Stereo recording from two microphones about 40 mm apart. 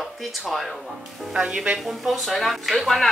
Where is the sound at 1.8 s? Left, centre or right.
Centre.